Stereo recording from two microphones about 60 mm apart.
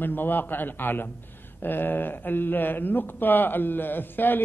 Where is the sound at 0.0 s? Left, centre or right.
Left.